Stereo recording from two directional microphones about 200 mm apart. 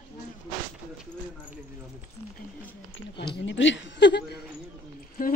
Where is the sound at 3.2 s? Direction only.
60° left (ahead or behind).